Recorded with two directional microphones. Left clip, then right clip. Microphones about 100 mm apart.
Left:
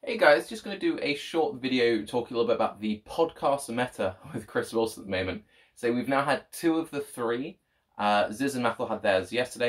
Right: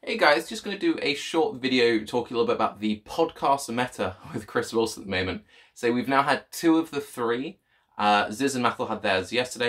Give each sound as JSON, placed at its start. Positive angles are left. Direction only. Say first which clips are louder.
{"t": 0.0, "sound": "speech", "louder": "even", "side_deg": -35}